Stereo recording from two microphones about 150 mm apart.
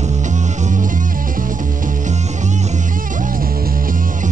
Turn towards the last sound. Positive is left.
turn(degrees=-65)  # may be behind; listen again after turning